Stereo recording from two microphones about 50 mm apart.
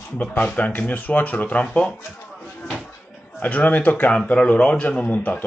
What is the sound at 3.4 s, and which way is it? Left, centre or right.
Speech, left.